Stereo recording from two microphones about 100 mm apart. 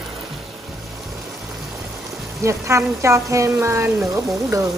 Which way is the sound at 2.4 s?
30° right (ahead or behind).